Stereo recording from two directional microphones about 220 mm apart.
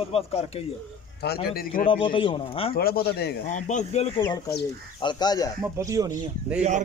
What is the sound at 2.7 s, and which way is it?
Speech, 45° left (ahead or behind).